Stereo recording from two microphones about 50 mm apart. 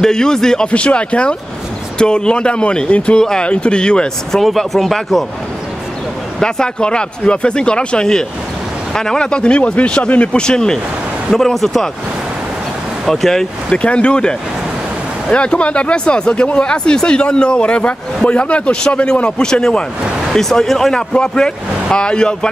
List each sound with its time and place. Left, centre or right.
0.0 s speech: centre
0.7 s speech: left
3.2 s speech: centre
4.4 s speech: centre
6.4 s speech: centre
13.1 s speech: centre
13.7 s speech: left
15.3 s speech: left